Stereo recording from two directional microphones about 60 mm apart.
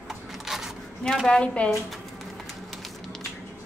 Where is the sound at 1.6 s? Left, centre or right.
Left.